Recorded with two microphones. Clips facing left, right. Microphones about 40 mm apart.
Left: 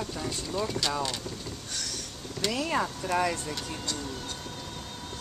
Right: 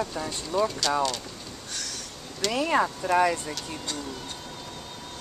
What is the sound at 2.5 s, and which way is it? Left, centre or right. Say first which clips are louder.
Speech: right 6 dB; right.